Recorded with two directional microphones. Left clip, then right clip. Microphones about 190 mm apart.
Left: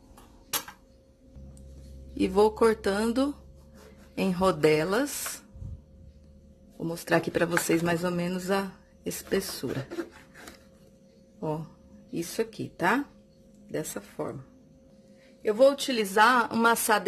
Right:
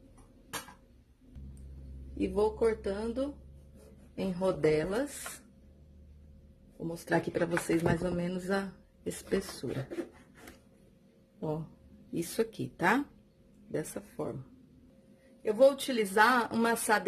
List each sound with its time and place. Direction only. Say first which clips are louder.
2.1 s speech: left 7 dB; 20° left (ahead or behind)
6.9 s speech: left 5 dB; 5° left (ahead or behind)
12.1 s speech: left 2 dB; centre (ahead or behind)
15.4 s speech: left 3 dB; 5° left (ahead or behind)